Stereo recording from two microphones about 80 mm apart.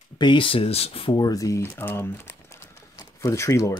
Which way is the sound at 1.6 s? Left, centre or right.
Left.